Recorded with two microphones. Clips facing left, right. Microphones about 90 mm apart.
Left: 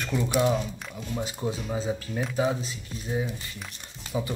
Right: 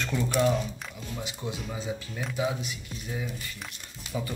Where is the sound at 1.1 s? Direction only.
40° left (ahead or behind).